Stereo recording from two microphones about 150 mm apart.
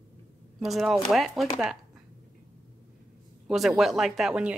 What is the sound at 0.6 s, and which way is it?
Speech, centre (ahead or behind).